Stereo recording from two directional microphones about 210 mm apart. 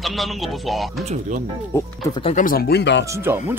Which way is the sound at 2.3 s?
40° left (ahead or behind).